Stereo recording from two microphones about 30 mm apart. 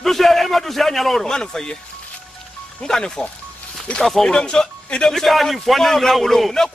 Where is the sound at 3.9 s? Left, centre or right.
Left.